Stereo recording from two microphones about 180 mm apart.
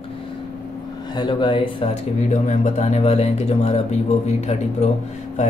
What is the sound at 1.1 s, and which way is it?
Speech, 25° left (ahead or behind).